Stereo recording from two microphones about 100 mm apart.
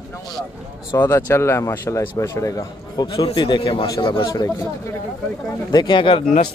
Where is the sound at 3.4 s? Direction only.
55° left (ahead or behind).